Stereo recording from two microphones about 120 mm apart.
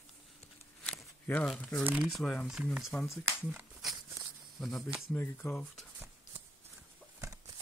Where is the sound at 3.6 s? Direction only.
10° right (ahead or behind).